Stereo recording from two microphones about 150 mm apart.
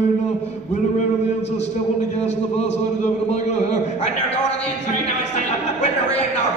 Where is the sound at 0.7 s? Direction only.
50° left (ahead or behind).